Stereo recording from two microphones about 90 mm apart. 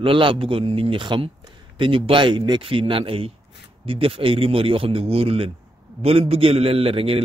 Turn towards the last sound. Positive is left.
turn(degrees=-90)